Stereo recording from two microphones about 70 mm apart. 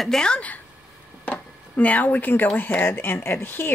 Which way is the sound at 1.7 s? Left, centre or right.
Left.